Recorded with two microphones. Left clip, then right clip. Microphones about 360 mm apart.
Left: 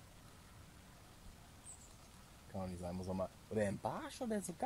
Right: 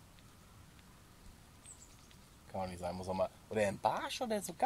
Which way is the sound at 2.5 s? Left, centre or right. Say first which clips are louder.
Right 6 dB; right.